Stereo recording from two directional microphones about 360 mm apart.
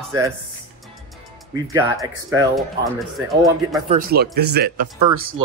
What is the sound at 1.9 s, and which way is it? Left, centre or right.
Speech, centre.